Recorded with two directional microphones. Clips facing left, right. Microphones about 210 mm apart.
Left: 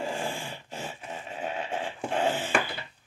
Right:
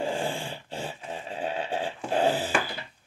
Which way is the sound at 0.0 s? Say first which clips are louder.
Right 3 dB; 30° right (ahead or behind).